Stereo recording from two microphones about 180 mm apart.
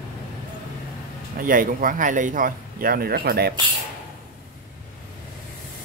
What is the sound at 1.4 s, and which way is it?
Speech, 50° right (ahead or behind).